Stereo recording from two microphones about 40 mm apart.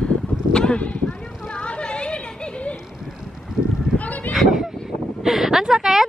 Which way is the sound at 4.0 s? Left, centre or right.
Left.